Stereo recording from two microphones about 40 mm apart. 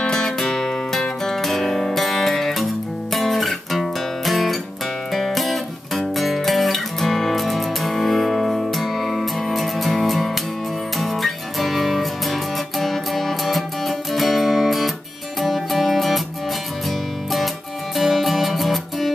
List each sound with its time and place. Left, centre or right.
0.0 s music: centre
3.1 s guitar: centre
5.1 s music: centre
17.9 s music: centre